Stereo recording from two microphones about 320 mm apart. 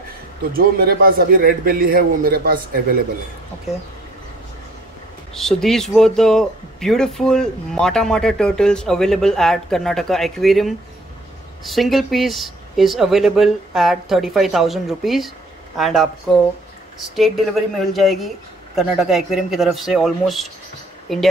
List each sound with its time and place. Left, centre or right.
0.5 s a man's voice: right
5.3 s speech: centre
17.1 s speech: centre